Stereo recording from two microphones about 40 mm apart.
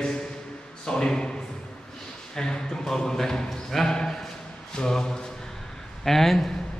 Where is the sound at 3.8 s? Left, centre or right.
Centre.